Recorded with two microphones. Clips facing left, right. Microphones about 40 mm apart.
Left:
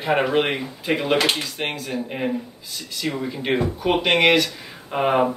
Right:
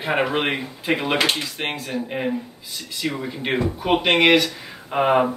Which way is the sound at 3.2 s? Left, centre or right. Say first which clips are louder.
Left 3 dB; centre.